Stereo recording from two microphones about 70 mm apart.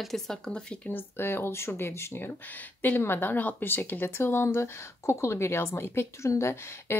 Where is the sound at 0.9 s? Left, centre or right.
Left.